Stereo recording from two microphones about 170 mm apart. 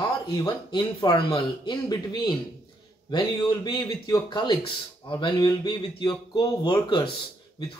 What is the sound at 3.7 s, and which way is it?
Speech, 25° left (ahead or behind).